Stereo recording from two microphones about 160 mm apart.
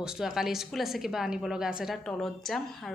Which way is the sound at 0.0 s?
5° right (ahead or behind).